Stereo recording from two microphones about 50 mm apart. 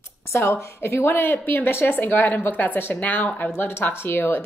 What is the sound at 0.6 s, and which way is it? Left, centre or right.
Speech, left.